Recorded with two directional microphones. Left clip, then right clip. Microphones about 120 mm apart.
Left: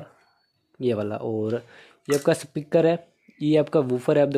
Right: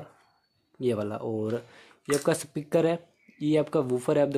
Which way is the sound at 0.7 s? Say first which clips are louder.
Left 3 dB; 30° left (ahead or behind).